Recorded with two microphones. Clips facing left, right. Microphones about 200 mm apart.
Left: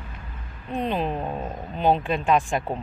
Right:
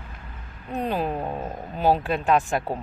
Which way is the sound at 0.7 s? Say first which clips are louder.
Even; 10° right (ahead or behind).